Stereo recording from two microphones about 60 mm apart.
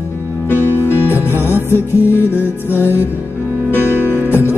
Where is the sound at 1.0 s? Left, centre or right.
Left.